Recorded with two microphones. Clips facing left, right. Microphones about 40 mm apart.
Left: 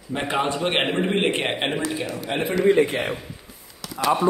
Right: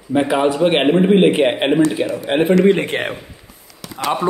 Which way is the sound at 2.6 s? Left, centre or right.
Right.